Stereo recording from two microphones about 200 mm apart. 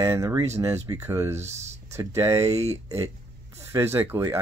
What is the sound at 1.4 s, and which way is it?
Speech, 35° right (ahead or behind).